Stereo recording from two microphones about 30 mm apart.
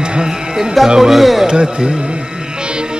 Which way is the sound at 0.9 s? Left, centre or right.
Centre.